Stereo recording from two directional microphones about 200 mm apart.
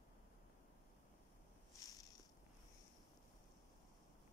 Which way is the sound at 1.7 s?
15° left (ahead or behind).